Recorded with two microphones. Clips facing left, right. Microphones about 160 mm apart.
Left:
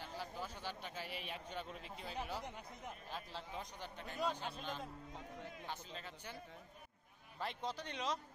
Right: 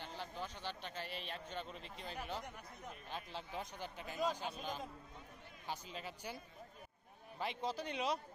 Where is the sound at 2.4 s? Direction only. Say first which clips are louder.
Left 2 dB; 20° left (ahead or behind).